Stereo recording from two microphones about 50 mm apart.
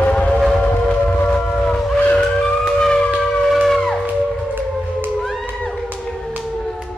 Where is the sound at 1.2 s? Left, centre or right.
Left.